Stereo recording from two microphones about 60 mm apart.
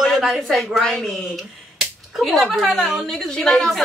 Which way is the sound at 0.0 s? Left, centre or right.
Centre.